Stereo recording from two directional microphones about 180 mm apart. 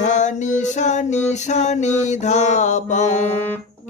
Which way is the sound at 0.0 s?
40° left (ahead or behind).